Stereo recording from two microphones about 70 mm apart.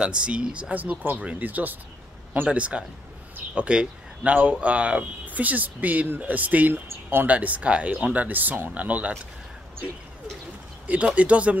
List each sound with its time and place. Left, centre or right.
0.0 s speech: centre
11.1 s speech: centre